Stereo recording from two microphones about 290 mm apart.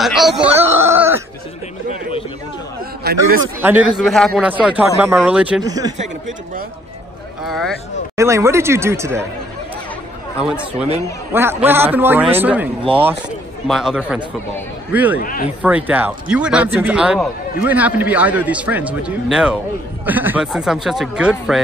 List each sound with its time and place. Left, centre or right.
0.0 s a sound: centre
3.0 s a man's voice: right
3.6 s a man's voice: centre
5.9 s speech: right
7.4 s a man's voice: centre
8.2 s a man's voice: centre
11.3 s a man's voice: centre
13.7 s a man's voice: centre
15.1 s speech: left
15.6 s a man's voice: centre